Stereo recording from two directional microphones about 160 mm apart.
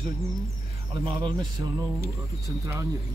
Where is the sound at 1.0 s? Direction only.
30° right (ahead or behind).